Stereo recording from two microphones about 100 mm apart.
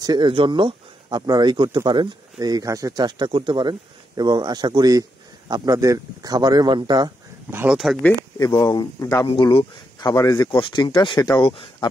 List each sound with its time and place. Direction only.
0.0 s speech: 45° right (ahead or behind)
3.3 s speech: 55° right (ahead or behind)
7.7 s speech: centre (ahead or behind)
8.6 s speech: 45° left (ahead or behind)
9.3 s speech: 70° left (ahead or behind)
9.9 s speech: 40° left (ahead or behind)
10.5 s speech: 55° left (ahead or behind)
11.4 s speech: 60° left (ahead or behind)